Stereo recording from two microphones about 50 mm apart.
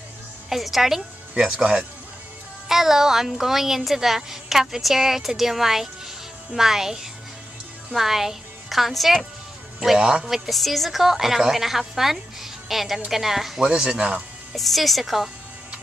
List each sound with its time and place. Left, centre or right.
0.5 s a woman's voice: centre
1.3 s a woman's voice: centre
9.9 s a woman's voice: centre
13.7 s speech: centre
14.5 s a woman's voice: centre